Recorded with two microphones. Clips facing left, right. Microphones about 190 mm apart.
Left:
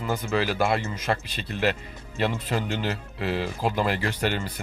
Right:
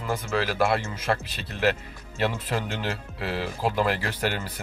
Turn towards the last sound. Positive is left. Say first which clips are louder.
# left 2 dB
turn(degrees=-5)  # may be behind; listen again after turning